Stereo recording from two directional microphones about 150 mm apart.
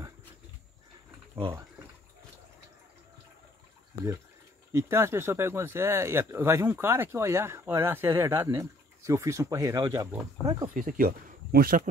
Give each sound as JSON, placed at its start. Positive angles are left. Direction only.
{"t": 4.7, "sound": "speech", "side_deg": -15}
{"t": 10.7, "sound": "speech", "side_deg": -65}